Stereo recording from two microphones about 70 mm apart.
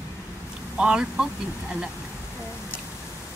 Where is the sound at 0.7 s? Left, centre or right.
Centre.